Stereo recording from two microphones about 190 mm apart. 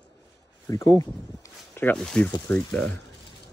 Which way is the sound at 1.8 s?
5° left (ahead or behind).